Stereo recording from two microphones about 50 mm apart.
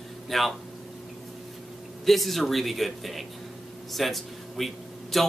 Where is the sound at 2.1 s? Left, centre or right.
Centre.